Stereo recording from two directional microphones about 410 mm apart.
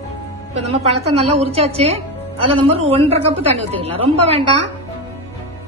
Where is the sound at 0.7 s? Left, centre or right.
Centre.